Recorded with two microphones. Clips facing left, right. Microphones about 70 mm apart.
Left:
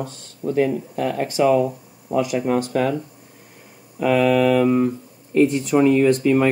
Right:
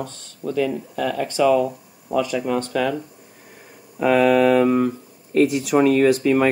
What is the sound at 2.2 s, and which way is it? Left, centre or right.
Speech, centre.